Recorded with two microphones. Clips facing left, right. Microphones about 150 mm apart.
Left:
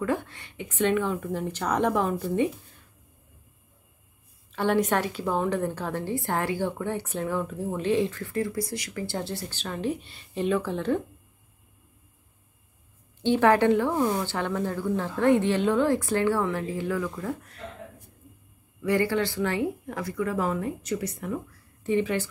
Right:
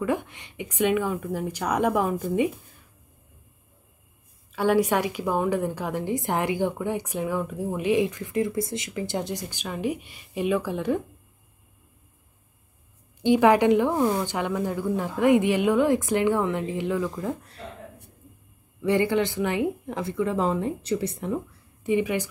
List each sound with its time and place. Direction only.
0.0 s a woman's voice: 15° right (ahead or behind)
4.5 s a woman's voice: 10° right (ahead or behind)
13.2 s a woman's voice: 15° right (ahead or behind)
18.8 s speech: 20° right (ahead or behind)
21.8 s a woman's voice: 15° right (ahead or behind)